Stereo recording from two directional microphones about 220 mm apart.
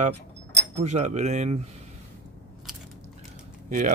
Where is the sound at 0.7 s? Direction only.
30° right (ahead or behind).